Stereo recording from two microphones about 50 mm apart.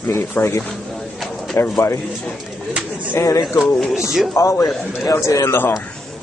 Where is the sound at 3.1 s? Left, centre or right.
Left.